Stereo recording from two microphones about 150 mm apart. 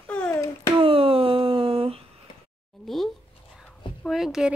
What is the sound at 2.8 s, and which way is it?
Speech, centre (ahead or behind).